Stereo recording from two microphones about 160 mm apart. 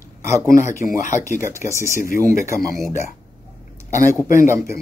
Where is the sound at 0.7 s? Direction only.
55° left (ahead or behind).